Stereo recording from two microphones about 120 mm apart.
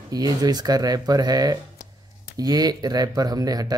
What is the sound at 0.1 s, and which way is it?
Speech, 30° right (ahead or behind).